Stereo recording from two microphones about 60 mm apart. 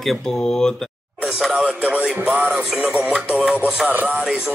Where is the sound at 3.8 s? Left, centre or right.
Right.